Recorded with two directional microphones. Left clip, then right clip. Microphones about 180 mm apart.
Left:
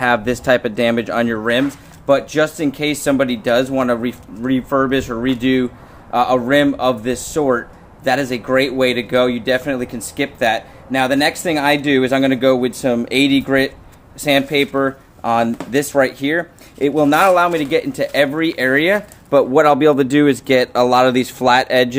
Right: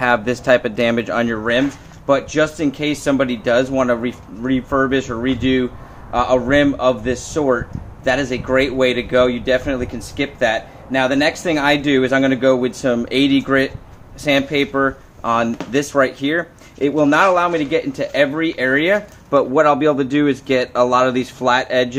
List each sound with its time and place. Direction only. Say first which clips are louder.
0.0 s speech: even; 15° left (ahead or behind)
19.5 s speech: left 2 dB; 45° left (ahead or behind)